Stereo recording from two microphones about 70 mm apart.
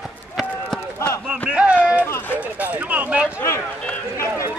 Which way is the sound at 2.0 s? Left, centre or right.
Left.